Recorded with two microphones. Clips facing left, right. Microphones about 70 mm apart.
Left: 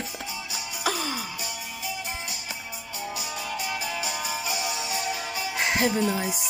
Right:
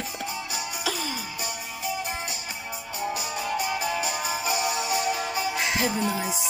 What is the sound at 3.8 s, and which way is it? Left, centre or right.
Music, right.